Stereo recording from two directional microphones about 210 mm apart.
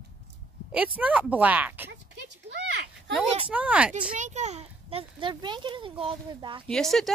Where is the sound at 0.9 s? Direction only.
5° right (ahead or behind).